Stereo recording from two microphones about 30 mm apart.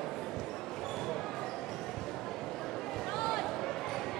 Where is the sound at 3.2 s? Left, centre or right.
Centre.